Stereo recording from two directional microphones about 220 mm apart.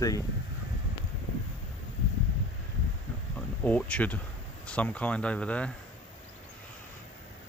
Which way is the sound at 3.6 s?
5° left (ahead or behind).